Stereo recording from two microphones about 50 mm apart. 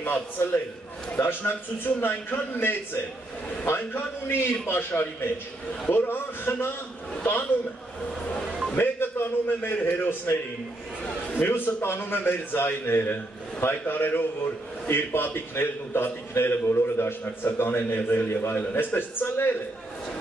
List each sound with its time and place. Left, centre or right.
0.0 s a man's voice: left
8.7 s a man's voice: left
11.3 s a man's voice: left
17.2 s a man's voice: left
18.6 s a man's voice: left